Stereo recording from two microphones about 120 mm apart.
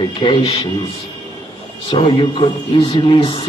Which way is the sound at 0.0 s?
45° left (ahead or behind).